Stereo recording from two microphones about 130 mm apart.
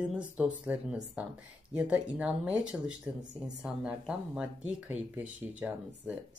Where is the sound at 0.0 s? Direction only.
10° right (ahead or behind).